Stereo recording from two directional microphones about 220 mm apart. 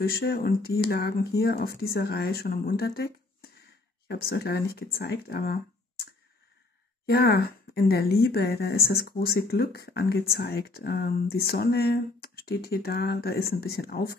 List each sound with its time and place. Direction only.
0.0 s a woman's voice: 45° left (ahead or behind)
7.1 s a woman's voice: 45° left (ahead or behind)